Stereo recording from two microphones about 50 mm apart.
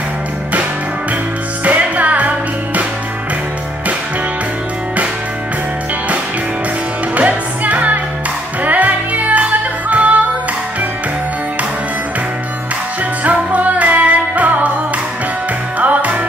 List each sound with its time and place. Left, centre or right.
1.6 s music: right
7.2 s music: right
13.2 s music: right
15.8 s music: right